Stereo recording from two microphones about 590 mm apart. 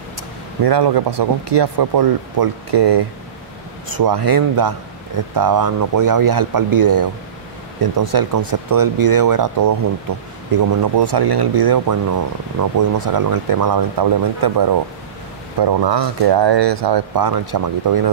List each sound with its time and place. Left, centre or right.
0.7 s speech: right